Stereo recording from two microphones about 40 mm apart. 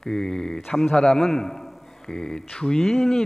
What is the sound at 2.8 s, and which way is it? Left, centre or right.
Speech, centre.